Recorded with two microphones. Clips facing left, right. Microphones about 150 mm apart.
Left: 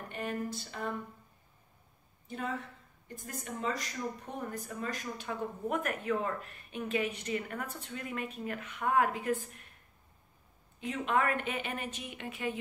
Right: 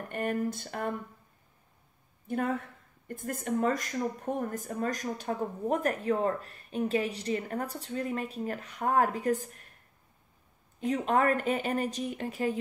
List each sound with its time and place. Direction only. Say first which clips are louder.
0.1 s speech: right 6 dB; 50° right (ahead or behind)
2.2 s speech: right 7 dB; 55° right (ahead or behind)
10.8 s speech: right 5 dB; 40° right (ahead or behind)